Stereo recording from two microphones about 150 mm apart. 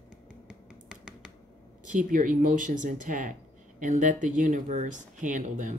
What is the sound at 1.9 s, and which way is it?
Speech, 60° right (ahead or behind).